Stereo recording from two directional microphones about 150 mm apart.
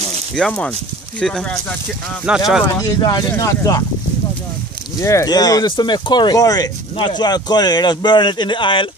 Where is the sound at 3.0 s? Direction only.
25° left (ahead or behind).